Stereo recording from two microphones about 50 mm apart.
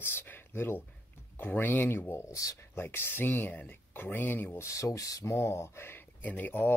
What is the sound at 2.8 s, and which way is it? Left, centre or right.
Speech, left.